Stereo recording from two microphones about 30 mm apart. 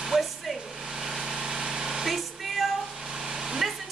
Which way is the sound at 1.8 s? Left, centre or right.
Centre.